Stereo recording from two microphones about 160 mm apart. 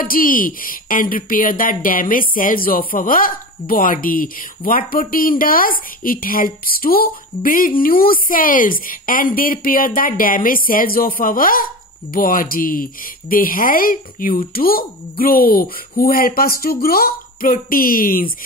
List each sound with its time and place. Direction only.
0.0 s speech: 60° left (ahead or behind)